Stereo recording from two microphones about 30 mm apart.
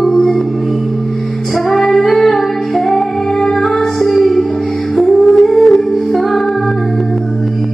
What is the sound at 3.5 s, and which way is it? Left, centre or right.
Music, centre.